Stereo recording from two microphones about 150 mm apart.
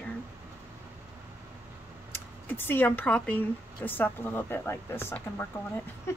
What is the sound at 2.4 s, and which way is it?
A woman's voice, 15° left (ahead or behind).